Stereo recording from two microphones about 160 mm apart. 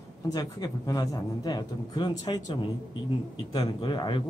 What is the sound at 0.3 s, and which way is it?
Speech, 25° left (ahead or behind).